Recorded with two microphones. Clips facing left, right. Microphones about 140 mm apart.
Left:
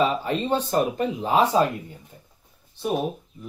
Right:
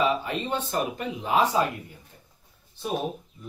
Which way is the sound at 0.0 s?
35° left (ahead or behind).